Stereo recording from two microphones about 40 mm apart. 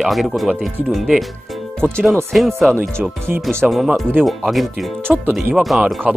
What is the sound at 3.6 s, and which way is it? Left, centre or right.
Speech, centre.